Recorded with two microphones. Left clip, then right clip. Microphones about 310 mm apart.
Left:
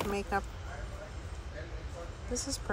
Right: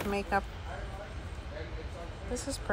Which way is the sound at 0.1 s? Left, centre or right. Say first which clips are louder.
Right 2 dB; centre.